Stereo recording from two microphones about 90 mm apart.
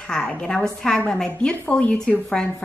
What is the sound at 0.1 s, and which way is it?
A woman's voice, 10° left (ahead or behind).